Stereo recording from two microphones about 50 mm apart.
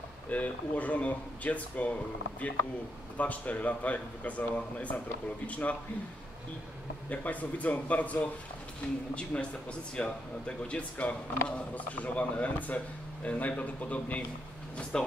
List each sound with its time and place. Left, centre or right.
0.3 s speech: left
3.2 s speech: left
7.1 s speech: left
14.8 s speech: centre